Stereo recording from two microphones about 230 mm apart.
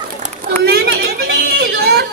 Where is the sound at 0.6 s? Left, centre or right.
Right.